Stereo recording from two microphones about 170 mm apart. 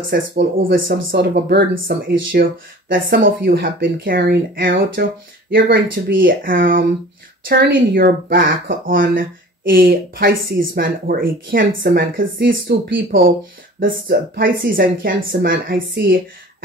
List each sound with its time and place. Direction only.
0.1 s speech: 60° right (ahead or behind); by 16.2 s 80° right